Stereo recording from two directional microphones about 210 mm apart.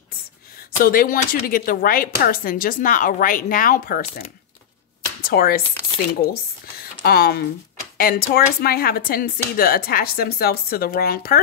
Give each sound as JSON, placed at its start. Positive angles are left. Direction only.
{"t": 0.7, "sound": "speech", "side_deg": 45}
{"t": 5.2, "sound": "speech", "side_deg": 45}